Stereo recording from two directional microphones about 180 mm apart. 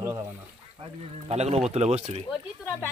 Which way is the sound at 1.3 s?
35° right (ahead or behind).